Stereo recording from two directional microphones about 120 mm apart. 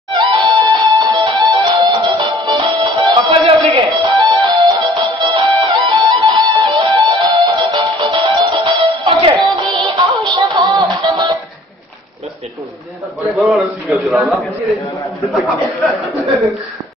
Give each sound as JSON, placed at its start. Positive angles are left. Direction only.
{"t": 0.1, "sound": "music", "side_deg": -40}
{"t": 13.3, "sound": "a sound", "side_deg": -5}
{"t": 15.4, "sound": "speech", "side_deg": 0}